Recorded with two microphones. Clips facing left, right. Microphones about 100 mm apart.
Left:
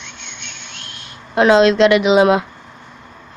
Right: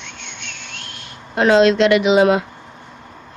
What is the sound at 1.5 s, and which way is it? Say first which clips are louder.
Speech: even; 20° left (ahead or behind).